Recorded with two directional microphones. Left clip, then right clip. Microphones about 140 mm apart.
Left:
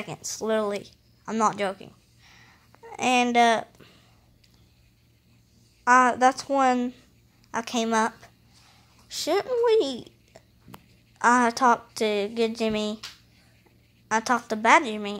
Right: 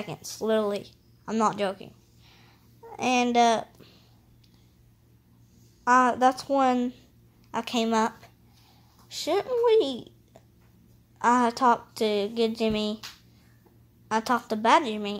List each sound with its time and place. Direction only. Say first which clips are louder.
0.0 s a woman's voice: even; 10° left (ahead or behind)
5.9 s a woman's voice: left 2 dB; 5° left (ahead or behind)
9.1 s a woman's voice: left 1 dB; 15° left (ahead or behind)
14.0 s a woman's voice: left 2 dB; 5° left (ahead or behind)